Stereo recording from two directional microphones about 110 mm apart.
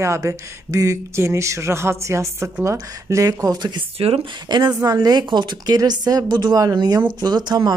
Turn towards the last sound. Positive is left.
turn(degrees=-40)  # may be behind; listen again after turning